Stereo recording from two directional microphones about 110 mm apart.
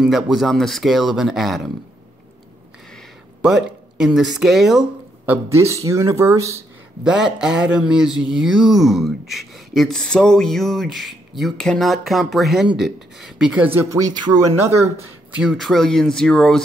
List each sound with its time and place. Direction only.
0.0 s speech: centre (ahead or behind)
3.4 s speech: 5° right (ahead or behind)
5.5 s speech: 25° right (ahead or behind)
7.1 s speech: 5° right (ahead or behind)
13.7 s a man's voice: 25° right (ahead or behind)
15.3 s speech: 5° right (ahead or behind)